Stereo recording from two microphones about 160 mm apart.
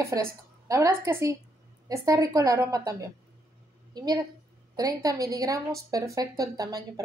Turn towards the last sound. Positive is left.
turn(degrees=-25)  # may be behind; listen again after turning